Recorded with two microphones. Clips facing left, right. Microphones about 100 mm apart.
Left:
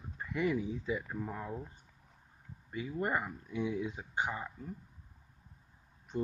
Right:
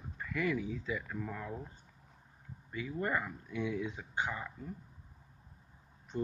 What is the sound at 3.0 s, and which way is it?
Speech, 20° left (ahead or behind).